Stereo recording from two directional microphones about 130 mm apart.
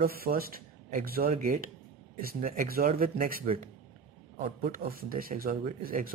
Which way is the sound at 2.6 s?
90° right.